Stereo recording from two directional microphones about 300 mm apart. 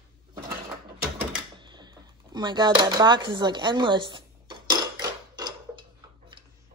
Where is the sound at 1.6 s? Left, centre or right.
Centre.